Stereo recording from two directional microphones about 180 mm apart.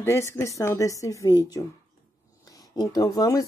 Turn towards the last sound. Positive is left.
turn(degrees=20)  # may be behind; listen again after turning